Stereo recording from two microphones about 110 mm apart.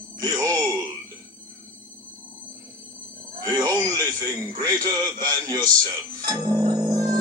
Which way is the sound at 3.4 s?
35° right (ahead or behind).